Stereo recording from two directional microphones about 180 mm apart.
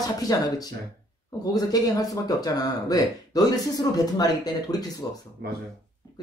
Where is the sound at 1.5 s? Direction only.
20° left (ahead or behind).